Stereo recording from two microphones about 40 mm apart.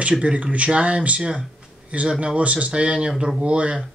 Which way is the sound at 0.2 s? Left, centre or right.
Right.